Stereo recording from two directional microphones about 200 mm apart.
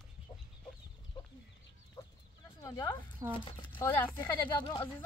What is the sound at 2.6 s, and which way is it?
Speech, 20° left (ahead or behind).